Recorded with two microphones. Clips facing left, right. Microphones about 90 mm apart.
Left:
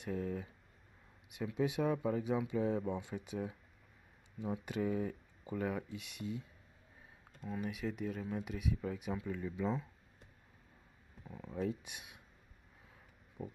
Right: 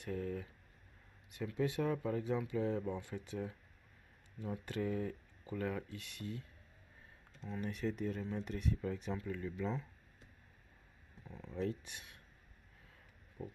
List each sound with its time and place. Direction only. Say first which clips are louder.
0.0 s speech: left 1 dB; 15° left (ahead or behind)
7.4 s speech: even; 5° left (ahead or behind)
11.2 s speech: left 1 dB; 10° left (ahead or behind)
13.4 s speech: left 2 dB; 15° left (ahead or behind)